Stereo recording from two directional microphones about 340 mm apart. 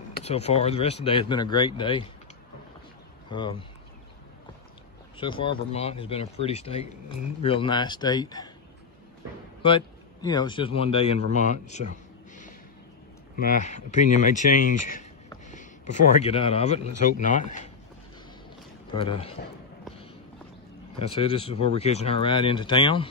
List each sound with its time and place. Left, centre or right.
0.1 s speech: centre
3.3 s speech: centre
5.1 s speech: centre
9.6 s speech: centre
11.3 s a sound: left
13.4 s a man's voice: left
18.9 s speech: centre
21.1 s speech: centre